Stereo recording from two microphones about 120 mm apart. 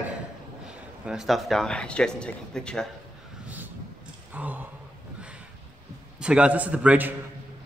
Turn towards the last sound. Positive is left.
turn(degrees=-10)  # may be behind; listen again after turning